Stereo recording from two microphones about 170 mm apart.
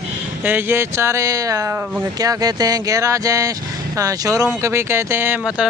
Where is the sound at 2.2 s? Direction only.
20° right (ahead or behind).